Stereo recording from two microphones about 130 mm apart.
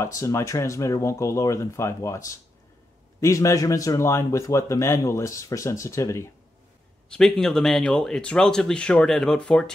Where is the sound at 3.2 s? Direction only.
25° left (ahead or behind).